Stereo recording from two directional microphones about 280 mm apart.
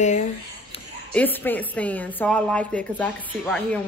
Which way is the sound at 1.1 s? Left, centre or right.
Centre.